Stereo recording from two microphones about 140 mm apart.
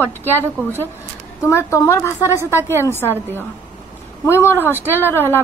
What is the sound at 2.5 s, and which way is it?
Speech, 15° right (ahead or behind).